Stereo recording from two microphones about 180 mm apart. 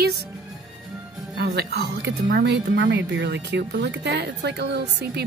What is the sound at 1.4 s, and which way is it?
Speech, 60° right (ahead or behind).